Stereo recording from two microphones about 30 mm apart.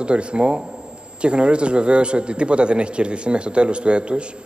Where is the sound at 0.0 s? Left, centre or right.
Right.